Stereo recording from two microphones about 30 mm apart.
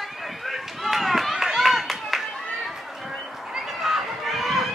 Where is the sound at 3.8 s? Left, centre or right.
Centre.